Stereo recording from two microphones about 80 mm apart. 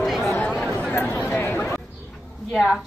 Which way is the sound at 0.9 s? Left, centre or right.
Left.